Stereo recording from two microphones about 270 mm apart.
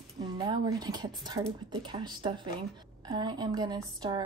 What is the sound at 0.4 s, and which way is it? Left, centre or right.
A woman's voice, centre.